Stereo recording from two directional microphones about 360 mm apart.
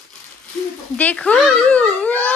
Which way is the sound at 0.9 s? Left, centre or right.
Centre.